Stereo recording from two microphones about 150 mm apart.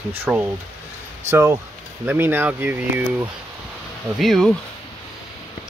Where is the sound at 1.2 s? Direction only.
20° right (ahead or behind).